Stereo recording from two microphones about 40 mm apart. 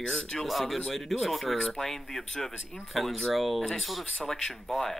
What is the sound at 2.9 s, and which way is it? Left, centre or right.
Speech, centre.